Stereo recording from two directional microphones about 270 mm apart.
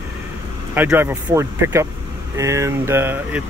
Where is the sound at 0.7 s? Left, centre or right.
Centre.